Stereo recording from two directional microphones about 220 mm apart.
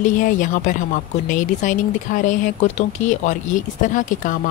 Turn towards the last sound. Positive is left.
turn(degrees=35)  # may be behind; listen again after turning